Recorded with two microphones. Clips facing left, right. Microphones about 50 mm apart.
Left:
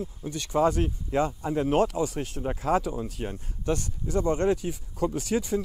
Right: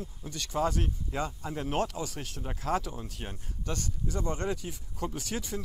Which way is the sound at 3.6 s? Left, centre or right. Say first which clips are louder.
Left 7 dB; centre.